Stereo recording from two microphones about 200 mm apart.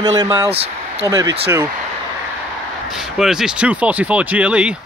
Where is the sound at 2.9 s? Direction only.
Centre (ahead or behind).